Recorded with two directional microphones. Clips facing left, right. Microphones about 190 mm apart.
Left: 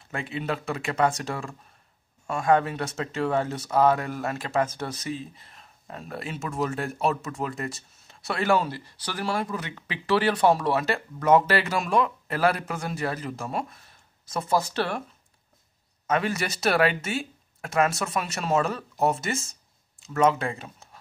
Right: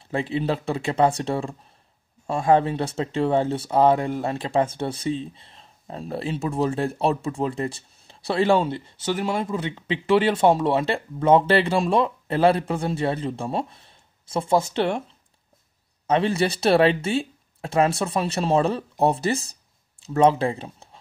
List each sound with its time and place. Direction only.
0.0 s speech: 30° right (ahead or behind)
16.1 s speech: 30° right (ahead or behind)